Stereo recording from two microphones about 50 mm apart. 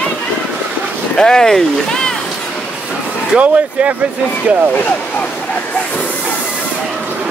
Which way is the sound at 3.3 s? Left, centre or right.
Right.